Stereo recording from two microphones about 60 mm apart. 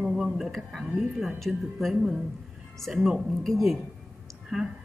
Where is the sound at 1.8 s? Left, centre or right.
Centre.